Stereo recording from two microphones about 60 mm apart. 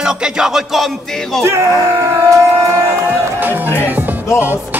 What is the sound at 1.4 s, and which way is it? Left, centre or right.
Speech, right.